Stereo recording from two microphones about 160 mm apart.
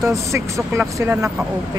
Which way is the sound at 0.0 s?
20° right (ahead or behind).